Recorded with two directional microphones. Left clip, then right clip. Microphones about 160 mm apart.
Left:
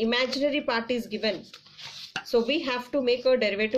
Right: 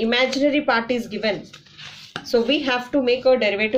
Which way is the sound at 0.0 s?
30° left (ahead or behind).